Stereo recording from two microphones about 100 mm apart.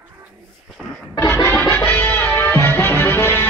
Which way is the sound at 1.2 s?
25° left (ahead or behind).